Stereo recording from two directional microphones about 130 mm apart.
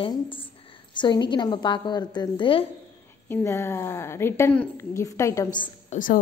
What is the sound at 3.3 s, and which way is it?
A woman's voice, 20° left (ahead or behind).